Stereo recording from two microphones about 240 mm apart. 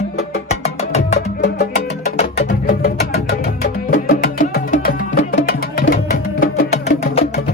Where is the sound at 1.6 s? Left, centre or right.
Left.